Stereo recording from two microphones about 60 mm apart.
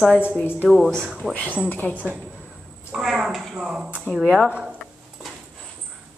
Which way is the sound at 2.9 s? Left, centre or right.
Centre.